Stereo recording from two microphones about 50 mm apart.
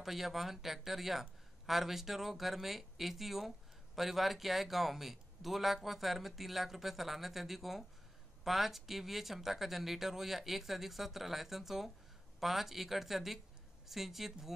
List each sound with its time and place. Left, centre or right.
0.0 s speech: centre